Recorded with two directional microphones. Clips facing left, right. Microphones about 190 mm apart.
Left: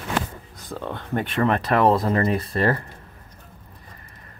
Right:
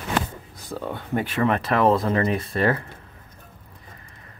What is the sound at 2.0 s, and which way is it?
Speech, 30° left (ahead or behind).